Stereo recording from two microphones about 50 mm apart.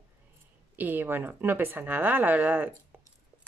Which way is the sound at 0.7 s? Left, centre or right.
Right.